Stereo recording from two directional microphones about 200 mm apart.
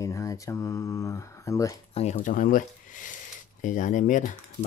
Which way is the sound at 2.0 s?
35° left (ahead or behind).